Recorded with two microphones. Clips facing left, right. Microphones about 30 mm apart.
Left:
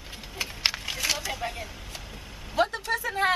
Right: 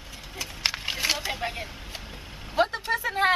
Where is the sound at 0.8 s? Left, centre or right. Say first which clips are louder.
Right 2 dB; centre.